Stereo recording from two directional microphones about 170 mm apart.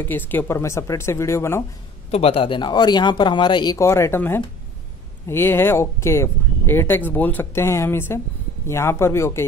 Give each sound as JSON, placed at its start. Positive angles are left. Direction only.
{"t": 0.0, "sound": "speech", "side_deg": 10}
{"t": 2.0, "sound": "speech", "side_deg": 35}